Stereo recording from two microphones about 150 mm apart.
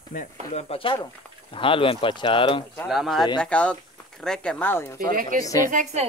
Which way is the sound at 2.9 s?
Centre (ahead or behind).